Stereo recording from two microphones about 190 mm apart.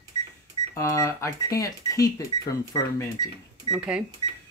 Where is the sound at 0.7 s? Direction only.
15° left (ahead or behind).